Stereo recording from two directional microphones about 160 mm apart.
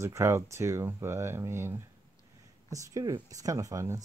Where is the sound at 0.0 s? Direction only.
15° right (ahead or behind).